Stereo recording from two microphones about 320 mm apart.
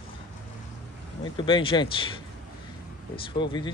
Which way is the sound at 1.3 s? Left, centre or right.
Centre.